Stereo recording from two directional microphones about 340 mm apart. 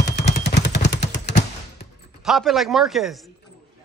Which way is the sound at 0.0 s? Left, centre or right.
Left.